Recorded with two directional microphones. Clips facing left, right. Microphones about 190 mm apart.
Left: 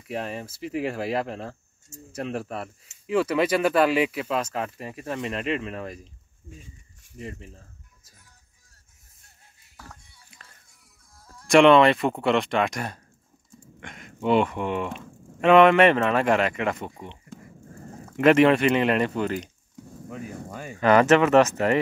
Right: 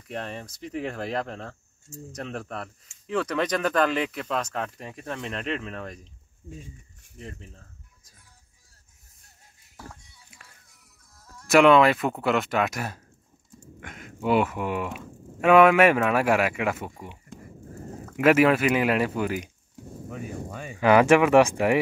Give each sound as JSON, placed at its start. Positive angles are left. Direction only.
{"t": 0.1, "sound": "speech", "side_deg": 10}
{"t": 6.4, "sound": "speech", "side_deg": -20}
{"t": 7.2, "sound": "speech", "side_deg": 5}
{"t": 11.4, "sound": "speech", "side_deg": 0}